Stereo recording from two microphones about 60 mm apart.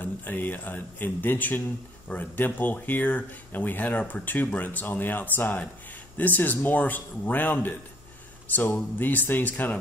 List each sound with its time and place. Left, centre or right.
0.0 s speech: left
8.7 s speech: left